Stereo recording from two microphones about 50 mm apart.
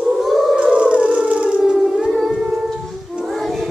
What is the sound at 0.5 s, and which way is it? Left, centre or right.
Howl, centre.